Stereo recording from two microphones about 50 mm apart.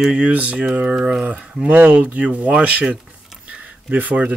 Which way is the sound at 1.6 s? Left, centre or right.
Right.